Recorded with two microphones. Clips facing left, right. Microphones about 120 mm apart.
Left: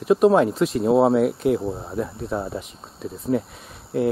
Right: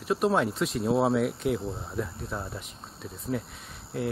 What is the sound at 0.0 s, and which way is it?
Speech, centre (ahead or behind).